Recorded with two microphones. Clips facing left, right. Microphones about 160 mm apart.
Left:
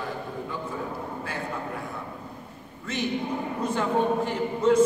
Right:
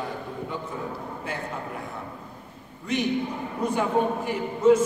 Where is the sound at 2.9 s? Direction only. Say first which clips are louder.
Right 2 dB; 15° right (ahead or behind).